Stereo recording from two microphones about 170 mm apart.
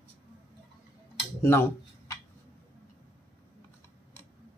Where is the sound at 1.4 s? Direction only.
15° left (ahead or behind).